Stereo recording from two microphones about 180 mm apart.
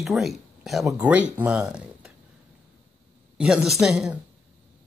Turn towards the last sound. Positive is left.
turn(degrees=-5)  # may be behind; listen again after turning